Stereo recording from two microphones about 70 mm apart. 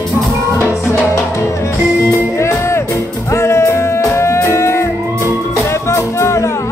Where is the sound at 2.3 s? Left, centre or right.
Left.